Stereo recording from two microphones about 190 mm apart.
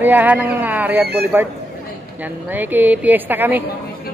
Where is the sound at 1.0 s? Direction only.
55° right (ahead or behind).